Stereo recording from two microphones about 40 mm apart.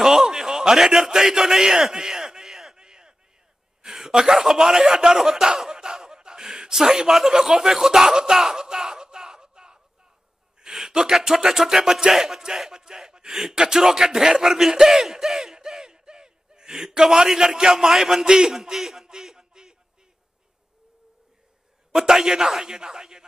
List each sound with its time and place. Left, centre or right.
0.0 s a sound: centre
10.6 s speech: centre
21.9 s speech: centre